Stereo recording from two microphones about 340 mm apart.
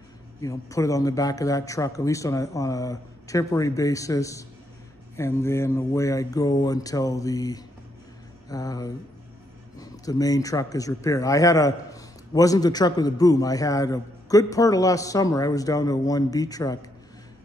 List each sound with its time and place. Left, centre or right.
0.4 s speech: centre